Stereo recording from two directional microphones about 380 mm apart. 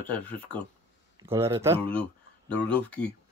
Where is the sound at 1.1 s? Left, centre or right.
Centre.